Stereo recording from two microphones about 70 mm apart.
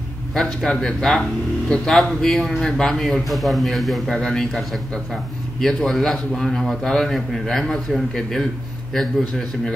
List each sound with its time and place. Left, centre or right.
0.3 s a man's voice: centre